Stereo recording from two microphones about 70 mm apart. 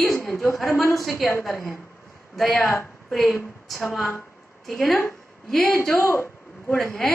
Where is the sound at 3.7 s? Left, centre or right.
Centre.